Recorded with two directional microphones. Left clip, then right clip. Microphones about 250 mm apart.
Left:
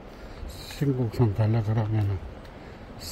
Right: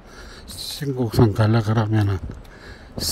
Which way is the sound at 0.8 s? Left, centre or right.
Centre.